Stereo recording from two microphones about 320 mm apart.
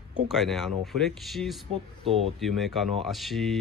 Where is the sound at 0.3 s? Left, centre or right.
Centre.